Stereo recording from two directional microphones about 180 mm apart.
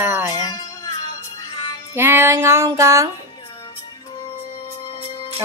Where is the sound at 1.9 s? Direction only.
15° right (ahead or behind).